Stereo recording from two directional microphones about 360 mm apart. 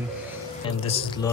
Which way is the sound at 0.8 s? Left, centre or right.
Centre.